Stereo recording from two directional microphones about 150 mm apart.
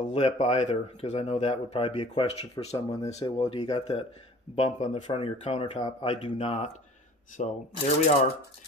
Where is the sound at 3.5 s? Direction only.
30° left (ahead or behind).